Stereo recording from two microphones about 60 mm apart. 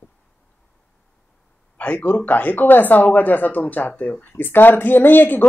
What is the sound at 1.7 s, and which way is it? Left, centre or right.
Speech, left.